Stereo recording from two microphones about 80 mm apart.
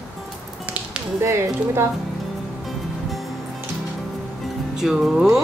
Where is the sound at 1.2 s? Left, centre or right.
Right.